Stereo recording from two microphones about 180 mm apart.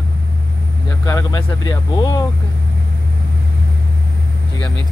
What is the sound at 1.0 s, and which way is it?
Speech, 20° left (ahead or behind).